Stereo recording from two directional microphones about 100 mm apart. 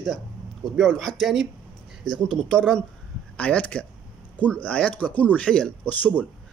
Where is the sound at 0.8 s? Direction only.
5° left (ahead or behind).